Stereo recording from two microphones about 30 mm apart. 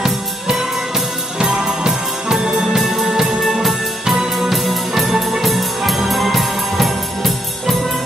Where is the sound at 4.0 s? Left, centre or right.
Centre.